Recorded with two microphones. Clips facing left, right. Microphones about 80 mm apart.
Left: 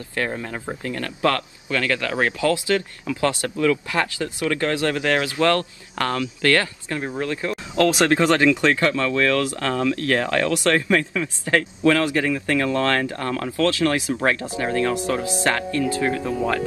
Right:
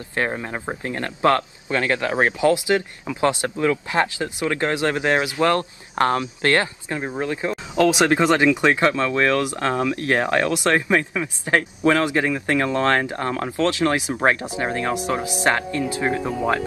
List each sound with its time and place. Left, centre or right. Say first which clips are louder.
0.1 s speech: right 2 dB; right